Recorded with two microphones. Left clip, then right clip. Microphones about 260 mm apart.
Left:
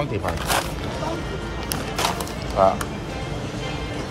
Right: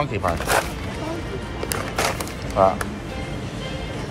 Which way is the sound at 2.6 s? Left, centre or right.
Centre.